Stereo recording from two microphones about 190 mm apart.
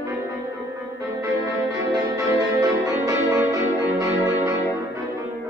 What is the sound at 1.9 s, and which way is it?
Music, 20° right (ahead or behind).